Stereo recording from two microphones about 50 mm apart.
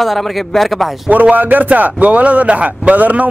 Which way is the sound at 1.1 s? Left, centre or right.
Right.